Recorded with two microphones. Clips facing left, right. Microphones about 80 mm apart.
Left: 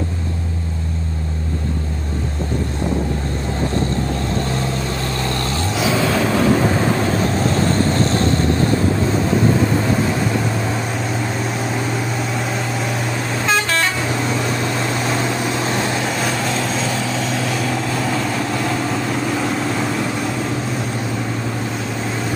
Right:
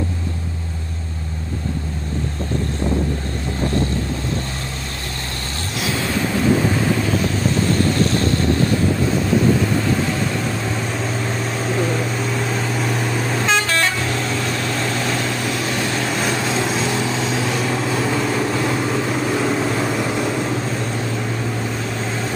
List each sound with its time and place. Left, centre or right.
12.5 s vehicle: centre
14.8 s vehicle: centre
16.7 s vehicle: centre